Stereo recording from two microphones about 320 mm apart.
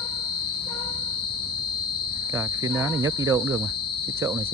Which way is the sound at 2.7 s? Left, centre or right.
Centre.